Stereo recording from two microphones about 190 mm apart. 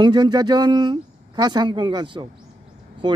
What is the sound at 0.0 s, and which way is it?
Speech, 25° right (ahead or behind).